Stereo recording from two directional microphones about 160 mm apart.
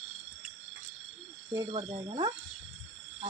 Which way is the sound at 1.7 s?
30° right (ahead or behind).